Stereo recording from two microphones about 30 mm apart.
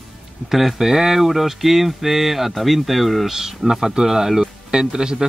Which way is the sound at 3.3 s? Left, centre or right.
Centre.